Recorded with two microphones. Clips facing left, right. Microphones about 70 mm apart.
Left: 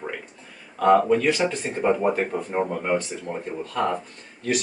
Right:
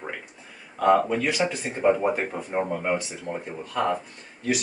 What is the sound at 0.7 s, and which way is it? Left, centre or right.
Speech, centre.